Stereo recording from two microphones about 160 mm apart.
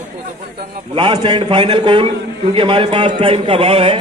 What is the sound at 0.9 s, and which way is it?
A man's voice, 30° right (ahead or behind).